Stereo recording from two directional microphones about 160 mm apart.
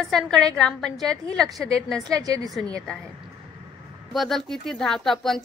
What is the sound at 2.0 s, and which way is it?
Speech, 20° right (ahead or behind).